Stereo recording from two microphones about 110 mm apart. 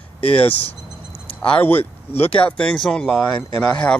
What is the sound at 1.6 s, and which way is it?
Speech, 20° left (ahead or behind).